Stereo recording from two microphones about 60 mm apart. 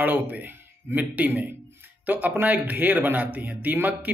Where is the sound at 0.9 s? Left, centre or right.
Right.